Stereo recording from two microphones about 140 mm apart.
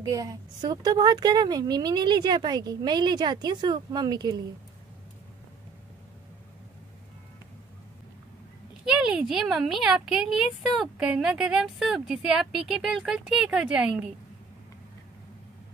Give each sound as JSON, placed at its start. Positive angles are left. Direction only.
{"t": 0.0, "sound": "a woman's voice", "side_deg": -25}
{"t": 8.8, "sound": "speech", "side_deg": -5}